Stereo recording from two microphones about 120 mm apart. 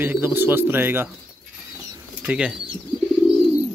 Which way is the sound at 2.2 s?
10° right (ahead or behind).